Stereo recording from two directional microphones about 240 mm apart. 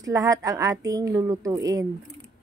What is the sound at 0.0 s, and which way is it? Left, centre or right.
A woman's voice, centre.